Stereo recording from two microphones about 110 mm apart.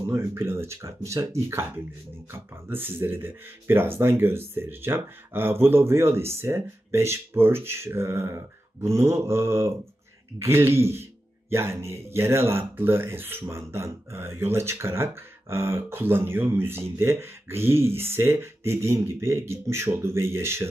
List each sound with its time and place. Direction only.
0.0 s speech: 25° right (ahead or behind)